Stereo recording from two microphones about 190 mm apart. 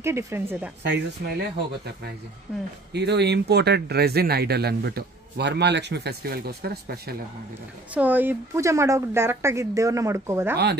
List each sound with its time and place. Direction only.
0.0 s a woman's voice: 15° right (ahead or behind)
0.8 s speech: 65° right (ahead or behind)
2.5 s a woman's voice: 5° right (ahead or behind)
2.9 s speech: 60° right (ahead or behind)
7.9 s a woman's voice: 10° right (ahead or behind)